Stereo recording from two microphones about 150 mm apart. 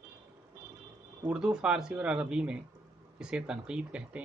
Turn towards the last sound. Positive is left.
turn(degrees=-5)  # may be behind; listen again after turning